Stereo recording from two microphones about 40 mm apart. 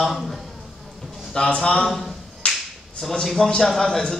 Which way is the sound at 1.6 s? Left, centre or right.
Left.